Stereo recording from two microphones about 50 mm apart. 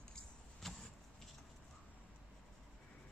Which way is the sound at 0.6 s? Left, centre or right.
Centre.